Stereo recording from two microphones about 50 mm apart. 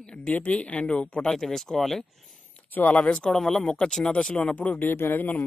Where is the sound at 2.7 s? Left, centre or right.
Left.